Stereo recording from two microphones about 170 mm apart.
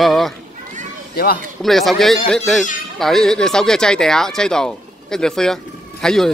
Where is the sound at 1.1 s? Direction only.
60° left (ahead or behind).